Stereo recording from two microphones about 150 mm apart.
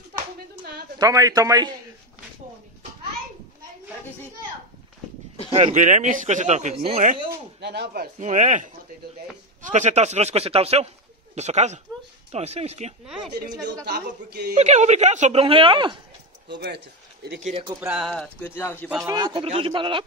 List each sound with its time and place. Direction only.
0.9 s a man's voice: 20° right (ahead or behind)
5.5 s speech: 50° right (ahead or behind)
7.2 s speech: 90° right
8.2 s speech: 55° right (ahead or behind)
13.8 s a woman's voice: 90° right
14.6 s speech: 50° right (ahead or behind); by 16.0 s 35° right (ahead or behind)
16.6 s speech: 90° right
17.7 s speech: 5° right (ahead or behind); by 18.9 s 15° left (ahead or behind)
18.9 s speech: 25° right (ahead or behind)